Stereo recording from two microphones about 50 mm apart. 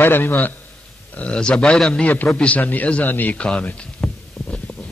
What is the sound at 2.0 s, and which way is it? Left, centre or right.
A man's voice, left.